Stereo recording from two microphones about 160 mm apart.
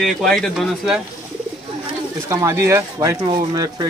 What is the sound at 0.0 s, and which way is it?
A man's voice, centre (ahead or behind).